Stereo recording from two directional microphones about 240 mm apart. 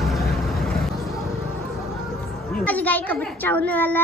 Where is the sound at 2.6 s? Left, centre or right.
Centre.